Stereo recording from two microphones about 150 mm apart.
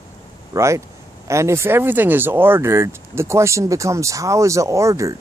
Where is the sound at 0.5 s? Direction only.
20° right (ahead or behind).